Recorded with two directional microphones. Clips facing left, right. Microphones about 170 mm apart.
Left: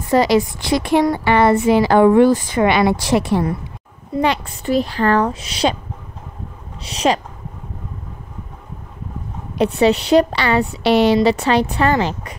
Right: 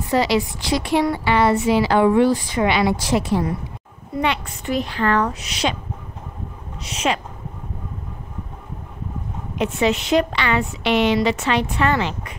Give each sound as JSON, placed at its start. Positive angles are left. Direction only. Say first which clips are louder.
{"t": 0.1, "sound": "a woman's voice", "louder": "left 5 dB", "side_deg": 45}
{"t": 4.1, "sound": "a woman's voice", "louder": "left 4 dB", "side_deg": 35}
{"t": 6.8, "sound": "a woman's voice", "louder": "left 5 dB", "side_deg": 35}
{"t": 9.6, "sound": "a woman's voice", "louder": "left 5 dB", "side_deg": 35}